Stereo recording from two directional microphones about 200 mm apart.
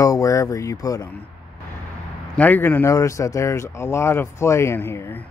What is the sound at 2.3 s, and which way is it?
Speech, 10° left (ahead or behind).